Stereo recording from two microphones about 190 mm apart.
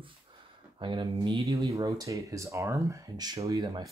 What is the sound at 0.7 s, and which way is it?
Speech, 25° right (ahead or behind).